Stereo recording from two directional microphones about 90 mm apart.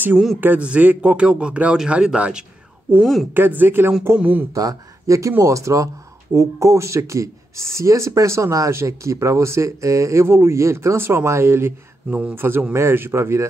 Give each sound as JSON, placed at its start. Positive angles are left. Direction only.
{"t": 0.4, "sound": "a man's voice", "side_deg": -15}
{"t": 3.0, "sound": "speech", "side_deg": 0}
{"t": 3.3, "sound": "speech", "side_deg": -25}
{"t": 4.6, "sound": "speech", "side_deg": -40}